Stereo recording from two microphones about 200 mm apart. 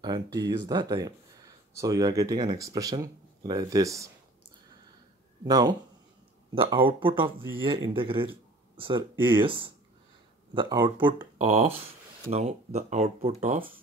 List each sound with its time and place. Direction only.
0.0 s speech: 20° right (ahead or behind)
5.4 s speech: 20° right (ahead or behind)
6.9 s speech: 25° right (ahead or behind)
11.3 s speech: 35° right (ahead or behind)
13.4 s speech: 45° right (ahead or behind)